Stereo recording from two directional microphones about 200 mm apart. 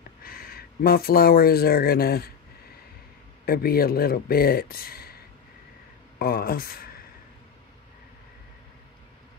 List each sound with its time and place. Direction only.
0.2 s speech: 45° left (ahead or behind)
3.4 s speech: 50° left (ahead or behind)